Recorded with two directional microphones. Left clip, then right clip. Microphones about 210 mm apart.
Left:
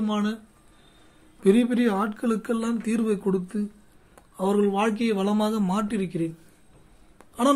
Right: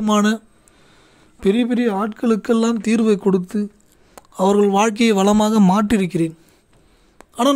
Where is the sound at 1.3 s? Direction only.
35° right (ahead or behind); by 6.3 s 50° right (ahead or behind).